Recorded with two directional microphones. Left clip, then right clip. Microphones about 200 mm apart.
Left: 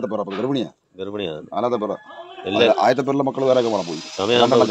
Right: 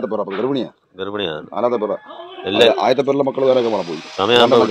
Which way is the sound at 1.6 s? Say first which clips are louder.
Right 3 dB; 55° left (ahead or behind).